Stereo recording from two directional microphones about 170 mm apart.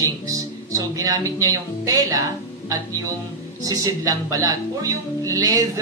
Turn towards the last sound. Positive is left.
turn(degrees=-20)  # may be behind; listen again after turning